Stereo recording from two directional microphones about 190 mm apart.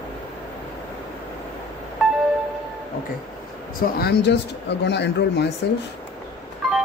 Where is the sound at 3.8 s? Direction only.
55° left (ahead or behind).